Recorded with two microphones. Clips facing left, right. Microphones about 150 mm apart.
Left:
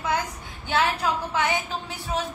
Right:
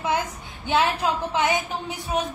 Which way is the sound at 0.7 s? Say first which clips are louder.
Right 2 dB; 20° right (ahead or behind).